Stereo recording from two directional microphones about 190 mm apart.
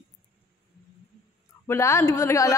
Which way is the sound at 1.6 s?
15° left (ahead or behind).